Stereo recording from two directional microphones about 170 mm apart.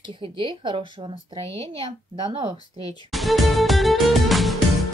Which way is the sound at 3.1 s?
Centre (ahead or behind).